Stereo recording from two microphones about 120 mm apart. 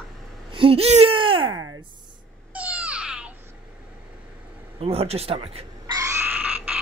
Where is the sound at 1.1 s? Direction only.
45° right (ahead or behind).